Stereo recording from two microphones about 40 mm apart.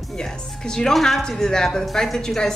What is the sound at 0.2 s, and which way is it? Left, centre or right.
Speech, centre.